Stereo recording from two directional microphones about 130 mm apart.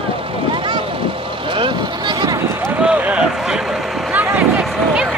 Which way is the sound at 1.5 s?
40° right (ahead or behind).